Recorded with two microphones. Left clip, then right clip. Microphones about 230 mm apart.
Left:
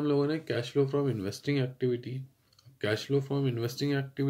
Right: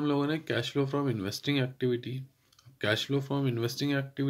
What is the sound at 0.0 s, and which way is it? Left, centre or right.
Speech, right.